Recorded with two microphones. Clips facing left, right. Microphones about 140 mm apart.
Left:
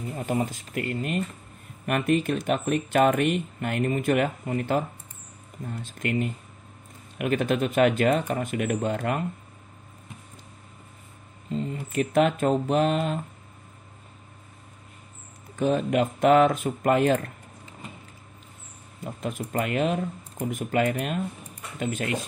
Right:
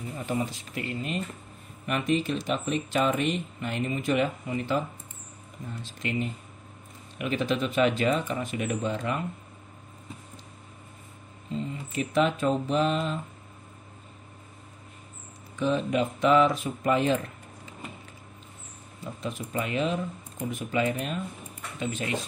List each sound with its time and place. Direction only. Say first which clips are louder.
0.3 s speech: left 3 dB; 45° left (ahead or behind)
11.5 s speech: left 4 dB; 50° left (ahead or behind)
15.5 s speech: left 3 dB; 50° left (ahead or behind)
19.0 s speech: left 3 dB; 50° left (ahead or behind)